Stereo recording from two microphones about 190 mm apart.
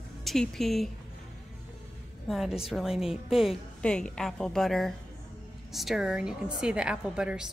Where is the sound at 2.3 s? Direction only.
Centre (ahead or behind).